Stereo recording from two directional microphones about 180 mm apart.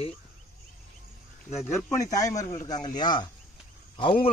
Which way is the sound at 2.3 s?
20° left (ahead or behind).